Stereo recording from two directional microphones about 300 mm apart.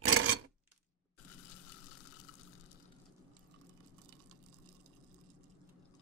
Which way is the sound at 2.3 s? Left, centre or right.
Left.